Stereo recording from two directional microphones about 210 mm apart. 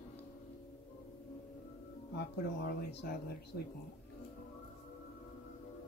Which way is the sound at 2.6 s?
50° left (ahead or behind).